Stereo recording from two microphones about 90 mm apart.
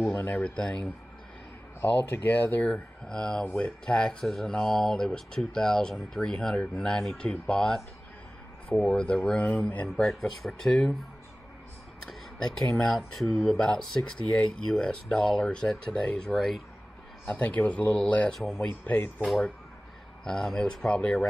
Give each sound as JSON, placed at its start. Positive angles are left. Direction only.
{"t": 0.1, "sound": "speech", "side_deg": 20}
{"t": 0.6, "sound": "speech", "side_deg": 10}
{"t": 1.8, "sound": "speech", "side_deg": 20}
{"t": 8.8, "sound": "speech", "side_deg": 10}
{"t": 12.1, "sound": "speech", "side_deg": 5}
{"t": 17.3, "sound": "speech", "side_deg": 15}
{"t": 20.2, "sound": "speech", "side_deg": 10}